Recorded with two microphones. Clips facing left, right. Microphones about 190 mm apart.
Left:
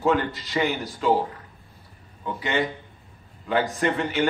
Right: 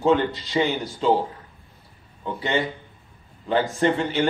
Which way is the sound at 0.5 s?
20° right (ahead or behind).